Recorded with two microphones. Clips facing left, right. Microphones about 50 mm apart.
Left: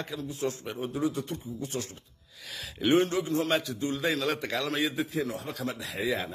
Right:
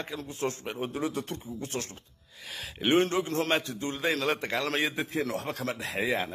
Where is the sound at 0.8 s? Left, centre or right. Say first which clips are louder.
Left 2 dB; right.